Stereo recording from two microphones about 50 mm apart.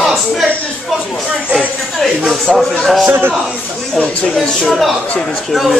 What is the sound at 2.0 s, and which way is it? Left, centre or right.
A man's voice, centre.